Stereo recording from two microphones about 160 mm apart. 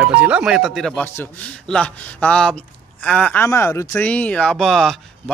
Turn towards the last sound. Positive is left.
turn(degrees=0)  # may be behind; listen again after turning